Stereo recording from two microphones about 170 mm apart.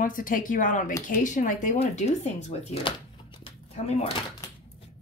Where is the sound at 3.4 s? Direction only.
35° left (ahead or behind).